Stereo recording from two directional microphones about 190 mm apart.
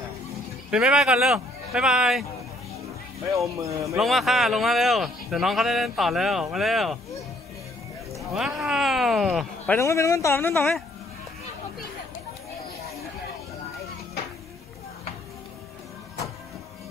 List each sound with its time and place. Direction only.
0.7 s speech: 5° right (ahead or behind)
3.3 s speech: 15° right (ahead or behind)
3.9 s speech: centre (ahead or behind)
8.2 s speech: centre (ahead or behind)
9.8 s speech: 15° left (ahead or behind)